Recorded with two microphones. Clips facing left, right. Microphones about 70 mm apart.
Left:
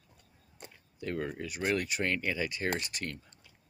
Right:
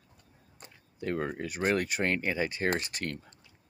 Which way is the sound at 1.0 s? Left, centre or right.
Right.